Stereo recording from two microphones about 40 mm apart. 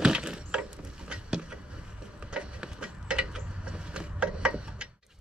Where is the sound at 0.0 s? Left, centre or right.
Centre.